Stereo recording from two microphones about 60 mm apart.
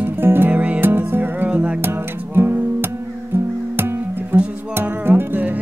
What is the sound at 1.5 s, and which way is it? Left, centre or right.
Music, right.